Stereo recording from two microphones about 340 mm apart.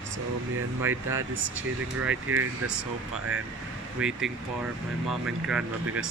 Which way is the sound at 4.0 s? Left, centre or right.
Centre.